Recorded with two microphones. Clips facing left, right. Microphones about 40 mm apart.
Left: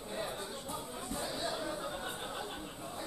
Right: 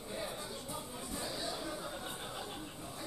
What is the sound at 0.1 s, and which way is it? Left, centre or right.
Music, left.